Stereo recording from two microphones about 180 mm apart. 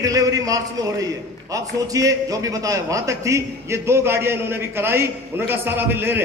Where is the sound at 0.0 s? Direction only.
20° right (ahead or behind).